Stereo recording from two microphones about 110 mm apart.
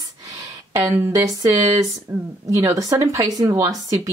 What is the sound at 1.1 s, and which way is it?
Speech, 30° right (ahead or behind).